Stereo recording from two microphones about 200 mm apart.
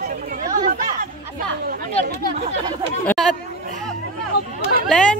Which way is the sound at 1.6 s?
50° right (ahead or behind).